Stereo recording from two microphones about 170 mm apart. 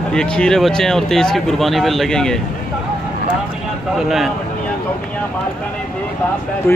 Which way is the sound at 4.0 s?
Centre (ahead or behind).